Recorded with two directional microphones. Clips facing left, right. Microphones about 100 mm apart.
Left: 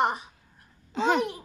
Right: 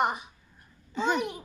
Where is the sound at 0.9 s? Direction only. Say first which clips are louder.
Left 3 dB; 90° left.